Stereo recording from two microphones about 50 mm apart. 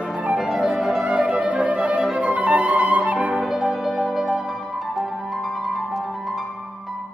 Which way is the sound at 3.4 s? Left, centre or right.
Centre.